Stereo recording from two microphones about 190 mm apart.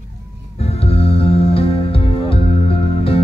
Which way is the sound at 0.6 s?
30° left (ahead or behind).